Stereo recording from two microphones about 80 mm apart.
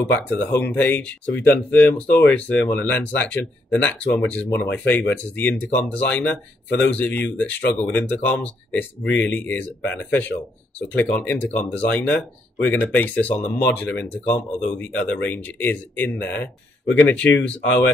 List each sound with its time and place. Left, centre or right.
0.1 s speech: left
10.8 s speech: left